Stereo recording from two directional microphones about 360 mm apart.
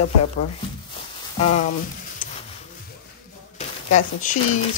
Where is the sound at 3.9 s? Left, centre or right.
Left.